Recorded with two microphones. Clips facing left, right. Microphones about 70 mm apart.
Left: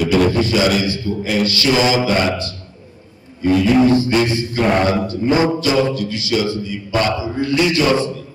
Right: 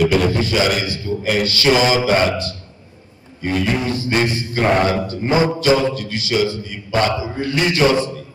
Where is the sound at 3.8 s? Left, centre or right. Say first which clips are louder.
Left 10 dB; left.